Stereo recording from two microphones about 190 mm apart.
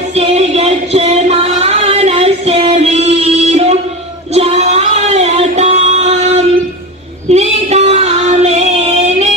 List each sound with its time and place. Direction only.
0.1 s music: 35° right (ahead or behind)
7.2 s female singing: 35° right (ahead or behind)